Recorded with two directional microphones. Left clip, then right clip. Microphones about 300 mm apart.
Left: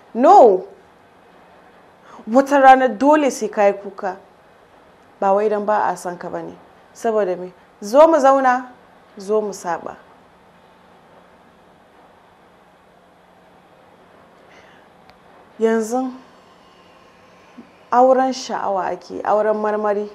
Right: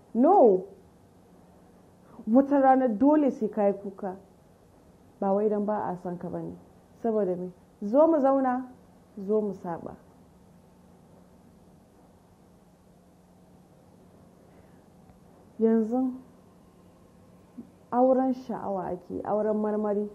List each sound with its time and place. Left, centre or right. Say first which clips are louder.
0.1 s a woman's voice: left 10 dB; centre
2.0 s a woman's voice: left 8 dB; centre
5.2 s a woman's voice: left 10 dB; centre
15.6 s a woman's voice: left 7 dB; centre
17.8 s a woman's voice: left 10 dB; centre